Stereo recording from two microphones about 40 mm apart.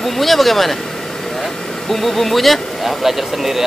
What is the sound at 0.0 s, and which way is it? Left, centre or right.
Speech, centre.